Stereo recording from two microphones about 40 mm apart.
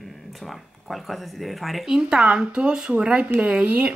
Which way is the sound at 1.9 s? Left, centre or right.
Centre.